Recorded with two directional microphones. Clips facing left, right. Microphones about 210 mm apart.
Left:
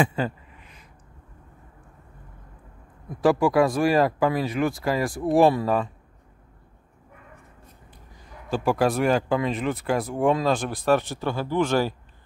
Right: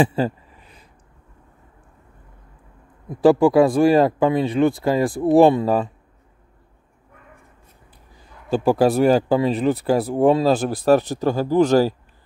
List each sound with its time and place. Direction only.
0.0 s a sound: 35° right (ahead or behind)
3.2 s speech: 30° right (ahead or behind)
8.6 s speech: 35° right (ahead or behind)